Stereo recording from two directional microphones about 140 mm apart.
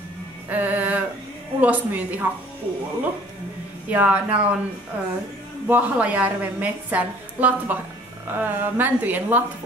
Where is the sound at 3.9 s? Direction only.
10° right (ahead or behind).